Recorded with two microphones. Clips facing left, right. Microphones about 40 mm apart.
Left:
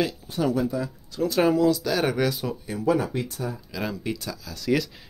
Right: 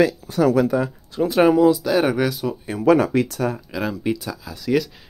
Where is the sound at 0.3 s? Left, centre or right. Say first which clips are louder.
Right 7 dB; right.